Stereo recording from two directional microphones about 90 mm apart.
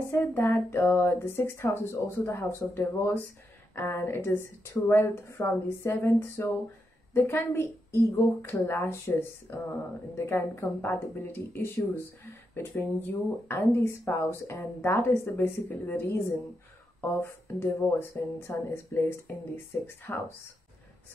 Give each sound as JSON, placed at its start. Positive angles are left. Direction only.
{"t": 0.1, "sound": "a woman's voice", "side_deg": 25}